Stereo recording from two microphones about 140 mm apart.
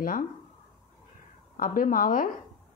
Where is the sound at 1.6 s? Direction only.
80° left.